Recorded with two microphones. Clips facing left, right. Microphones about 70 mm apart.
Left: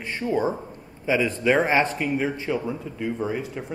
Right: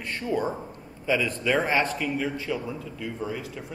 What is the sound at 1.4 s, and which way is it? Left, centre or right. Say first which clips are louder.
A man's voice: left 4 dB; left.